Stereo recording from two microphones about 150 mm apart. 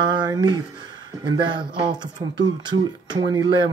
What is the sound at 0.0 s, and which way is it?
Speech, 30° right (ahead or behind).